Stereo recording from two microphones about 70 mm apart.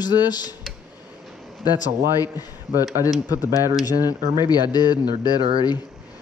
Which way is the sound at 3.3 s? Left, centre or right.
Left.